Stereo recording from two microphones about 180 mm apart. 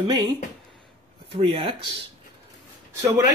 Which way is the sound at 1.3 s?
30° right (ahead or behind).